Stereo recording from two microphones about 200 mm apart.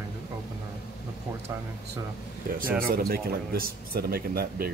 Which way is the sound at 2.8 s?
50° right (ahead or behind).